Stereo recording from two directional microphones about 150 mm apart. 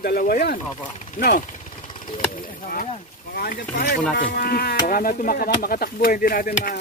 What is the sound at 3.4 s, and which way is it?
Speech, 90° left.